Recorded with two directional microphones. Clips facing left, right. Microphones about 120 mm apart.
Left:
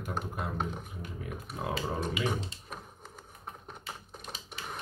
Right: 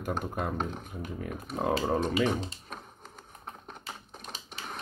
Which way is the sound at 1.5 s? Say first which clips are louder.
Right 7 dB; 45° right (ahead or behind).